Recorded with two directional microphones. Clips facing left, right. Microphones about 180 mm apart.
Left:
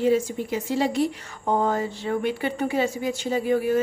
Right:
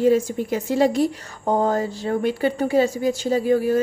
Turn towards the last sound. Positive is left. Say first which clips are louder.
# right 3 dB
turn(degrees=-35)  # may be behind; listen again after turning